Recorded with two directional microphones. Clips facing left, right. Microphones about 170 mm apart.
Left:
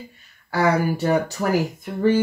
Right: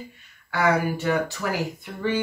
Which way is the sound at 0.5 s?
35° left (ahead or behind).